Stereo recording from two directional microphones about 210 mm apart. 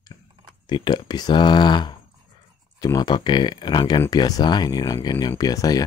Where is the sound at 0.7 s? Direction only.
20° left (ahead or behind).